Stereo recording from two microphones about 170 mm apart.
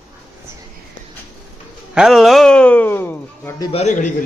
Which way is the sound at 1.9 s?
Centre (ahead or behind).